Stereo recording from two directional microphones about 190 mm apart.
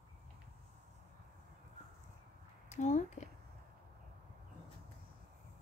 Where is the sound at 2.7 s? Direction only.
40° left (ahead or behind).